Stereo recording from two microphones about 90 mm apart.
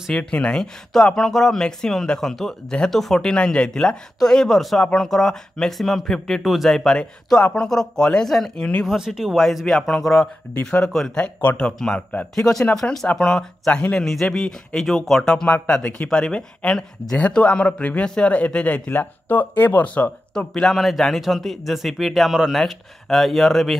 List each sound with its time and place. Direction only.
0.1 s speech: 10° left (ahead or behind)
8.8 s speech: 5° right (ahead or behind)
10.6 s speech: 15° left (ahead or behind)
20.3 s speech: 5° left (ahead or behind)